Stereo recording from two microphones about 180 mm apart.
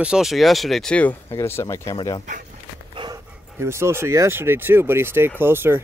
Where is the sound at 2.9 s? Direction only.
25° right (ahead or behind).